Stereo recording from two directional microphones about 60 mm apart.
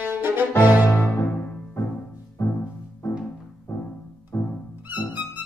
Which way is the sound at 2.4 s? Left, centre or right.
Left.